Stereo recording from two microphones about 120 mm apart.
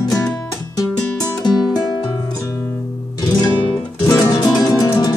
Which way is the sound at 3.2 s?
30° left (ahead or behind).